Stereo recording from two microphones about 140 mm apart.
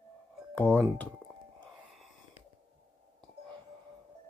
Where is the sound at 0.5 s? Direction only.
10° left (ahead or behind).